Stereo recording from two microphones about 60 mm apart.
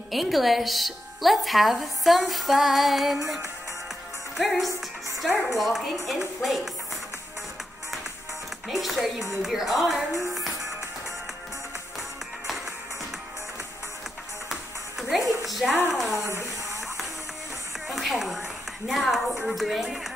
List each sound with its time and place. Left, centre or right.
0.1 s a woman's voice: centre
4.4 s a woman's voice: centre
8.6 s a woman's voice: centre
10.3 s music: centre
14.5 s music: centre
15.4 s a sound: centre
15.9 s a woman's voice: centre
16.2 s music: left
17.8 s a woman's voice: centre